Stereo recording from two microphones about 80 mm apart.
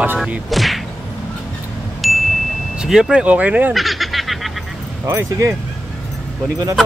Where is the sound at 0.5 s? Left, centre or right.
Centre.